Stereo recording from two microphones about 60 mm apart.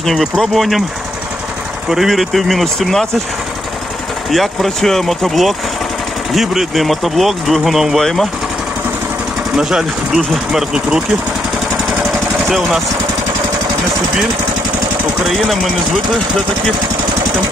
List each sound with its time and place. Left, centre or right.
0.0 s speech: centre
1.9 s speech: centre
4.3 s speech: centre
9.6 s speech: centre
10.7 s speech: centre
12.4 s speech: centre
15.2 s speech: centre